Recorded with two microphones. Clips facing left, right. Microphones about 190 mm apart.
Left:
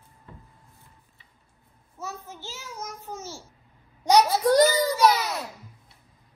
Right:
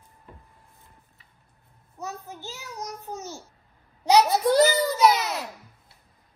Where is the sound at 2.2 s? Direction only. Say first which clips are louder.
Right 1 dB; 15° right (ahead or behind).